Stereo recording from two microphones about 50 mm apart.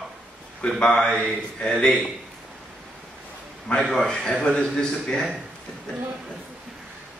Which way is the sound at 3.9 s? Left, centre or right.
Centre.